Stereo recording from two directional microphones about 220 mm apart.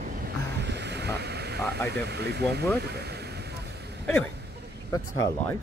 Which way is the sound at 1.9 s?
50° right (ahead or behind).